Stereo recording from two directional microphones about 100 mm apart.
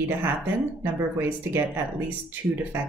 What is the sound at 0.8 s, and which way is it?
Speech, 20° right (ahead or behind).